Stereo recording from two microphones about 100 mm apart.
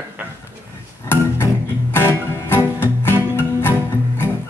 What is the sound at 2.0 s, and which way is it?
Music, 20° left (ahead or behind).